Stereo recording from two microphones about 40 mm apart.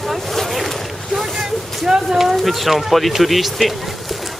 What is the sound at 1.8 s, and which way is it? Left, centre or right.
Speech, centre.